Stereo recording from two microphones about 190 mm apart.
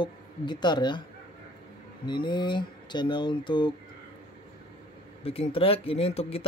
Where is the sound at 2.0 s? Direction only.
25° left (ahead or behind).